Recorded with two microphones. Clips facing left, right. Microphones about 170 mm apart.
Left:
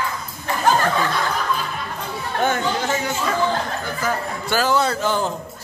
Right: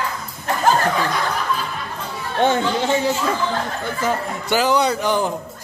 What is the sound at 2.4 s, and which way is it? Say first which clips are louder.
Chatter: right 4 dB; 25° right (ahead or behind).